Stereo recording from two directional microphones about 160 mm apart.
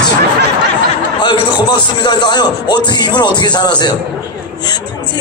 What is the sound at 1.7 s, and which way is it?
Speech, 25° left (ahead or behind).